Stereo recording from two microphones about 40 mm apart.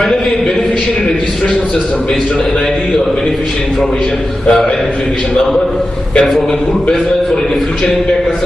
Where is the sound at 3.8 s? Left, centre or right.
Centre.